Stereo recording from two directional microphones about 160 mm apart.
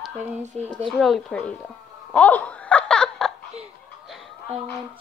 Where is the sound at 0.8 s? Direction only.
Centre (ahead or behind).